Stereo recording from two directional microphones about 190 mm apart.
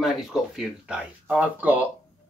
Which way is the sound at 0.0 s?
Centre (ahead or behind).